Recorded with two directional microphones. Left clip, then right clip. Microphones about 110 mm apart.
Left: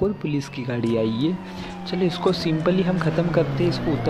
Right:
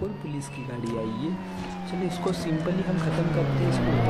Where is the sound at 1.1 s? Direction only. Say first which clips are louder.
Left 7 dB; centre (ahead or behind).